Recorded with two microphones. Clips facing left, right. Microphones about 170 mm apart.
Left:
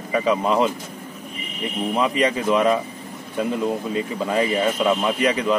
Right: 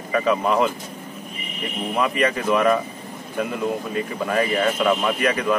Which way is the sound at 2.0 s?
20° left (ahead or behind).